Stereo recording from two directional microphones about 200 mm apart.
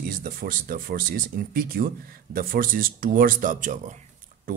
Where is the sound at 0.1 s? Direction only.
45° right (ahead or behind).